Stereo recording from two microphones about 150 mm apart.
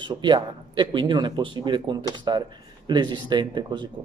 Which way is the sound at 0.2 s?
30° right (ahead or behind).